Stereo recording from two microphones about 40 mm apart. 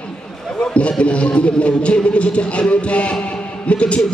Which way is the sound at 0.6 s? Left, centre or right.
Left.